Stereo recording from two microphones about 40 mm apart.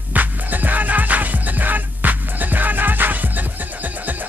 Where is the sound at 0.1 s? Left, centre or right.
Right.